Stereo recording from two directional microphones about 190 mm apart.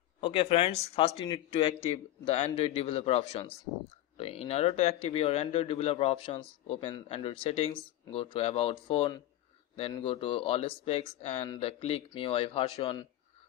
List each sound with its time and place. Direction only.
0.2 s speech: 30° left (ahead or behind)